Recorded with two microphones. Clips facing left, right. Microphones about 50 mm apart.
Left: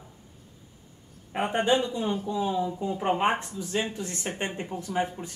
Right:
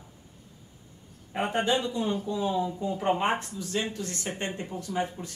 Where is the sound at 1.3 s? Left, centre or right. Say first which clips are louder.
Left 2 dB; centre.